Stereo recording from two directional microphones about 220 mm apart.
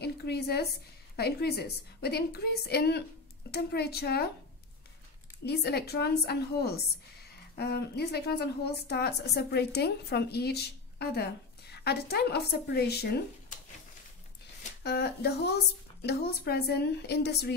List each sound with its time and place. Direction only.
0.0 s a woman's voice: 45° left (ahead or behind)
5.4 s a woman's voice: 45° left (ahead or behind)
14.8 s a woman's voice: 50° left (ahead or behind)